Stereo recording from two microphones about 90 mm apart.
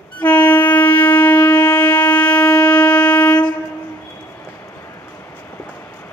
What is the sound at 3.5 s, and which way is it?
Train, 25° left (ahead or behind).